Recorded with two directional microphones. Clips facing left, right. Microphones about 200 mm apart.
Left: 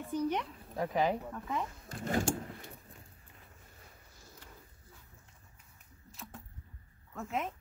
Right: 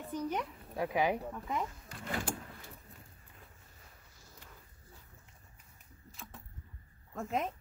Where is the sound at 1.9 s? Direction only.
45° left (ahead or behind).